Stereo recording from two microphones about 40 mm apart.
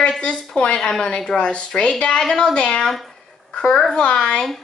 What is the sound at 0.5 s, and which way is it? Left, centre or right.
A woman's voice, left.